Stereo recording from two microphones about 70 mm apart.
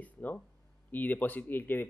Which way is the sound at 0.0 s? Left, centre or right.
Left.